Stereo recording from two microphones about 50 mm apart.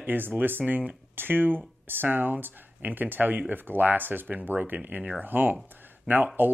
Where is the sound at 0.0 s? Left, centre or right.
Right.